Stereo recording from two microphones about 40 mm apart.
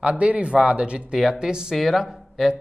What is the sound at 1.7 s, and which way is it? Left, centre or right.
Speech, centre.